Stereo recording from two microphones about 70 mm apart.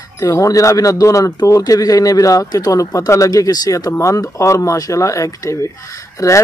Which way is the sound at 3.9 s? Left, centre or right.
Left.